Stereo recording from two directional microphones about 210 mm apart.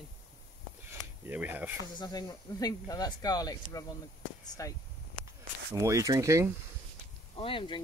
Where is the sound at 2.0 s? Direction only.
20° left (ahead or behind).